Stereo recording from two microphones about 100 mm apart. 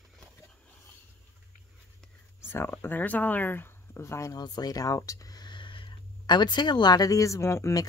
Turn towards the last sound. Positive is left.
turn(degrees=30)  # may be behind; listen again after turning